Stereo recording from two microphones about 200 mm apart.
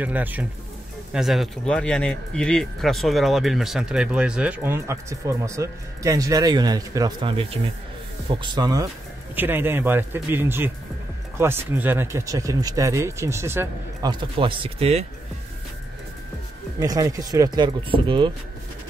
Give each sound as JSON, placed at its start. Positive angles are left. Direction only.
{"t": 0.0, "sound": "speech", "side_deg": -10}
{"t": 14.4, "sound": "speech", "side_deg": -25}
{"t": 16.8, "sound": "speech", "side_deg": -20}